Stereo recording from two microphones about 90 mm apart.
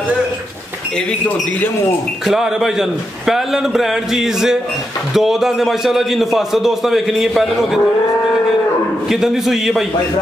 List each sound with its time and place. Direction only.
2.2 s a man's voice: 5° right (ahead or behind)
9.1 s a man's voice: 5° right (ahead or behind)